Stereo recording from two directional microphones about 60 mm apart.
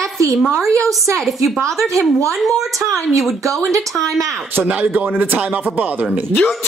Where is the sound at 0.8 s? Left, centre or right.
Right.